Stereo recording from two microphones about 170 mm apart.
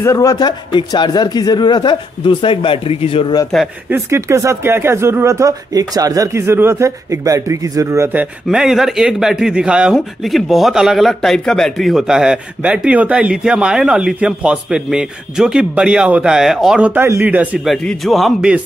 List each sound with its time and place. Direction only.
0.0 s speech: 20° left (ahead or behind)
3.9 s speech: 15° right (ahead or behind)